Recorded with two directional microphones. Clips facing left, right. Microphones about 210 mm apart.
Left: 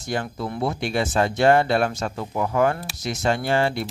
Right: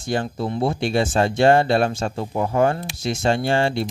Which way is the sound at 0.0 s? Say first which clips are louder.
Right 3 dB; 30° right (ahead or behind).